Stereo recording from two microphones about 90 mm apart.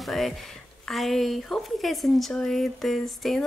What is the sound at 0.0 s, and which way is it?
Speech, centre (ahead or behind).